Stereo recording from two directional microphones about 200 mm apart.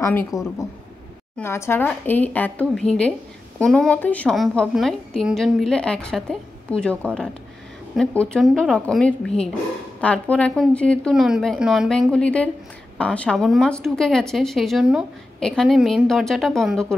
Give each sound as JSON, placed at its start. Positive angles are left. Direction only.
{"t": 0.0, "sound": "speech", "side_deg": 10}
{"t": 0.3, "sound": "a woman's voice", "side_deg": 0}
{"t": 1.4, "sound": "a woman's voice", "side_deg": 10}